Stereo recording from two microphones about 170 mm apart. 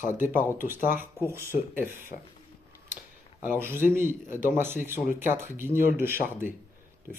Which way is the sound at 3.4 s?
10° right (ahead or behind).